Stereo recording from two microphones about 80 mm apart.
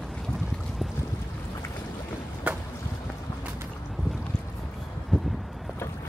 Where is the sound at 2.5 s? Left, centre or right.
Centre.